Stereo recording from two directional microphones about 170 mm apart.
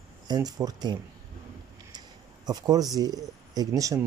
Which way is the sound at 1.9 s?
25° right (ahead or behind).